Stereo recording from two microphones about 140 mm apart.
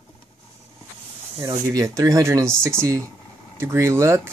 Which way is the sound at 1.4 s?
20° right (ahead or behind).